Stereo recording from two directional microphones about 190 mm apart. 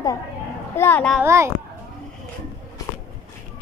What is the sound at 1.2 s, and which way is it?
Speech, 15° right (ahead or behind).